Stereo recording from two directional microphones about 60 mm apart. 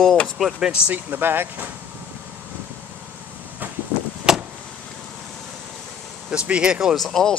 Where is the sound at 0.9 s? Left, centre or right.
Right.